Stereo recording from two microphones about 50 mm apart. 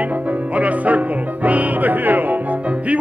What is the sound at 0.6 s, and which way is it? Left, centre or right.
Music, right.